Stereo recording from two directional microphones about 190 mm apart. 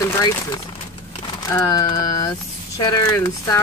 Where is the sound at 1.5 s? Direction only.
20° left (ahead or behind).